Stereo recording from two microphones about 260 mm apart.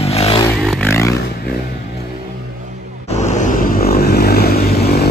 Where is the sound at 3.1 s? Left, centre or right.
Left.